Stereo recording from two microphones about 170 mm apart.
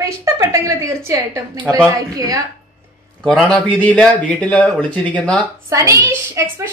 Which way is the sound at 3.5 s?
5° left (ahead or behind).